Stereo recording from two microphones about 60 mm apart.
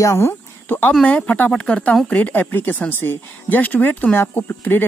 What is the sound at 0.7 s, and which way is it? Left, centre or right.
Speech, left.